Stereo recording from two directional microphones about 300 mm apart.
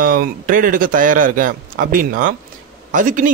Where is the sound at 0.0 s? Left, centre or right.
Right.